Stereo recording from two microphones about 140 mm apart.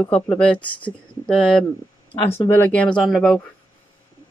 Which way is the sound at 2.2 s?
15° left (ahead or behind).